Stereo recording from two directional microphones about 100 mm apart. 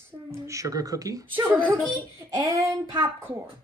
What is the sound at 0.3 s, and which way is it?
Speech, 30° right (ahead or behind).